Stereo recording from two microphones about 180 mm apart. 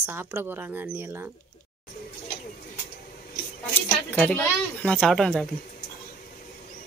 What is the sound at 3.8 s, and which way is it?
Speech, 10° left (ahead or behind).